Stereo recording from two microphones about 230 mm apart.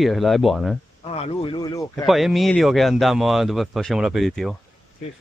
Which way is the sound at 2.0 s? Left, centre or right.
Centre.